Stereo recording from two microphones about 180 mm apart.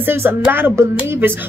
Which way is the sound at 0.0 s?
10° right (ahead or behind).